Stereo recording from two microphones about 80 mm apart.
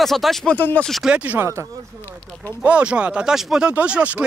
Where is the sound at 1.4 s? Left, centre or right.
Right.